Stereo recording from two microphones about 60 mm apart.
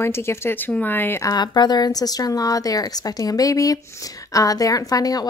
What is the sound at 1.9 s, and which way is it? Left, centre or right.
Speech, left.